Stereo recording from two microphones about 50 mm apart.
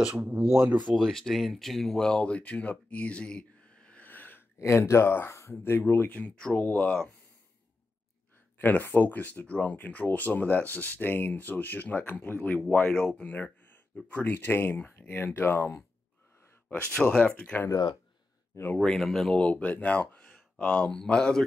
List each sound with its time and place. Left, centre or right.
0.2 s speech: right
0.9 s speech: centre; by 4.0 s left
4.0 s a sound: left
4.6 s speech: left
6.0 s speech: left
6.9 s speech: centre
8.5 s speech: left
14.0 s speech: left
14.3 s speech: left
16.7 s speech: left
17.3 s speech: left
18.8 s speech: centre
19.3 s speech: left